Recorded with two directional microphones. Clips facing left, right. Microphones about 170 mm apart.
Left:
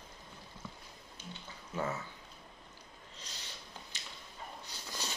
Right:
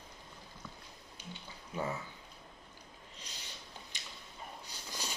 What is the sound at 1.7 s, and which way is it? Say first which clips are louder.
Speech: left 1 dB; 15° right (ahead or behind).